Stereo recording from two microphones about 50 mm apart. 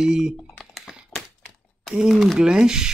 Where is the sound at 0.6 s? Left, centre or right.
Centre.